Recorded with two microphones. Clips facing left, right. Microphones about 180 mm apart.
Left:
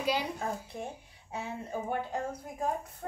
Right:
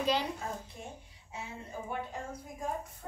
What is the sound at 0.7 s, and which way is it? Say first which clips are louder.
A woman's voice: left 6 dB; 55° left (ahead or behind).